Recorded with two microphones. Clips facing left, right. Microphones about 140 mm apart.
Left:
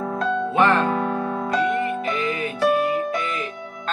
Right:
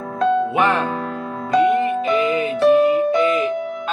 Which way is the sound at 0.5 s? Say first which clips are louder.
Even; 15° right (ahead or behind).